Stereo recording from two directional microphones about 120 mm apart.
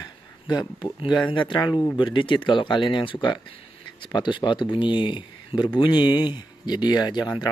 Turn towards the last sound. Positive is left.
turn(degrees=35)  # may be behind; listen again after turning